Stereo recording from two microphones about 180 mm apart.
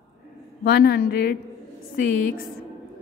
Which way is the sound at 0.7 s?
60° left (ahead or behind).